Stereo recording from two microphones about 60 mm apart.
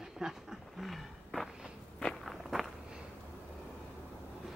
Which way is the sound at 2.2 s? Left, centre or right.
Centre.